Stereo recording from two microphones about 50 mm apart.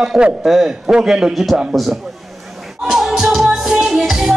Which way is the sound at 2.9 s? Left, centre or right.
Centre.